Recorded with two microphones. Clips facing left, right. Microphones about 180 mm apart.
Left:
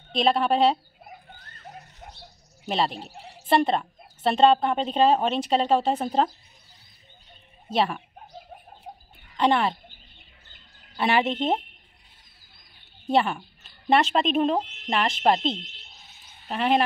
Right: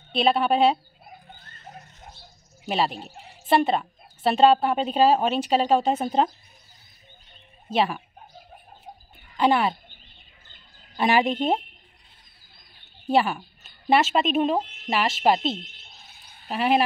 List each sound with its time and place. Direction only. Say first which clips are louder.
0.1 s speech: right 1 dB; 5° right (ahead or behind)
2.7 s a woman's voice: right 1 dB; 5° right (ahead or behind)
7.7 s speech: right 1 dB; 5° right (ahead or behind)
9.4 s speech: right 1 dB; 5° right (ahead or behind)
11.0 s speech: right 2 dB; 15° right (ahead or behind)
13.1 s speech: right 1 dB; 5° right (ahead or behind)